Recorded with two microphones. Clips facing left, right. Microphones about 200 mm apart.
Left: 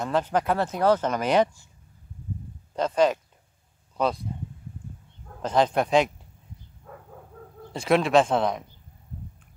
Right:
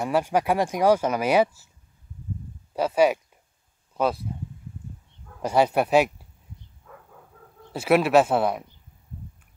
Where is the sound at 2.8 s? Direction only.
10° right (ahead or behind).